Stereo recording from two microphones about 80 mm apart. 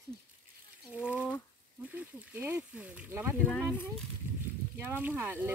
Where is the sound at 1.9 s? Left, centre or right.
Right.